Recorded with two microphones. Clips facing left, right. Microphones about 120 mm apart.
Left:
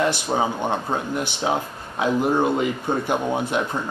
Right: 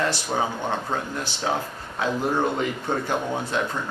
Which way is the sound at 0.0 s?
15° left (ahead or behind).